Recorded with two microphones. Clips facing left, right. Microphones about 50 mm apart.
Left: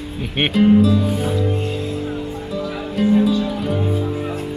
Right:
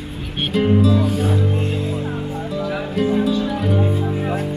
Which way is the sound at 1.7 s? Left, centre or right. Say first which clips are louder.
Right 1 dB; centre.